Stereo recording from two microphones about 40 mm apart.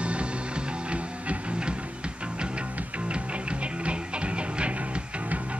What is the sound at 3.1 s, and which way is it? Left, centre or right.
Music, right.